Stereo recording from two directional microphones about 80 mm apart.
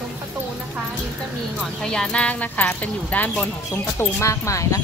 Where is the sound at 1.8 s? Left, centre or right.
Centre.